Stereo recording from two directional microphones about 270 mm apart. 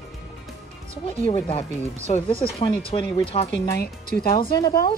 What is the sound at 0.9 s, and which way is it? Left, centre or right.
Speech, left.